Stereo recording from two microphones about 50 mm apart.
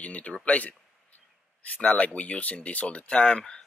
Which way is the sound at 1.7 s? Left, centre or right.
Left.